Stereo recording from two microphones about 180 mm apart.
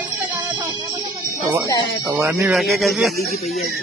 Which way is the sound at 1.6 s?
20° left (ahead or behind).